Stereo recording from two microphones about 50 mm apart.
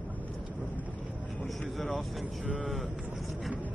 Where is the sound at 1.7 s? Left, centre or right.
Centre.